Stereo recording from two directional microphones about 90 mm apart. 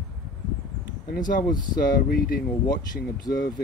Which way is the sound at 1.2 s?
50° left (ahead or behind).